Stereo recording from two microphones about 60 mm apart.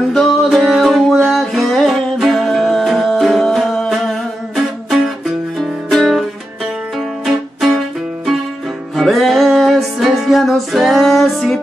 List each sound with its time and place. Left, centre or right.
0.1 s music: centre
8.9 s music: centre